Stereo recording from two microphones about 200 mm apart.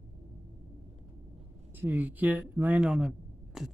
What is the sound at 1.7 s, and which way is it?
Speech, 10° right (ahead or behind).